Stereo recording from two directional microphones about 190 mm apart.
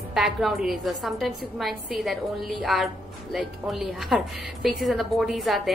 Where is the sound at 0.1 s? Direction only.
Centre (ahead or behind).